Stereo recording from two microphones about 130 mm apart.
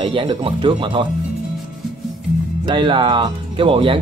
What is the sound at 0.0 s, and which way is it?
Speech, 40° right (ahead or behind).